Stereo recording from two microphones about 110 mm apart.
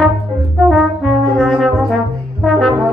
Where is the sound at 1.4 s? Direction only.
5° left (ahead or behind).